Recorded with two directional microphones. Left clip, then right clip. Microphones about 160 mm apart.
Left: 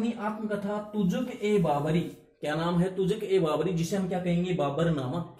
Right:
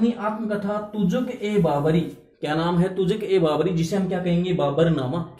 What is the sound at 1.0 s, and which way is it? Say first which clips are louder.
Speech: right 3 dB; 10° right (ahead or behind).